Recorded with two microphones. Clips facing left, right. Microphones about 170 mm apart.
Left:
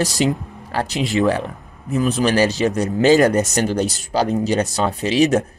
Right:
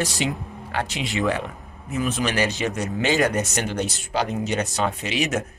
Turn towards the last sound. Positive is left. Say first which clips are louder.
# left 9 dB
turn(degrees=35)  # may be behind; listen again after turning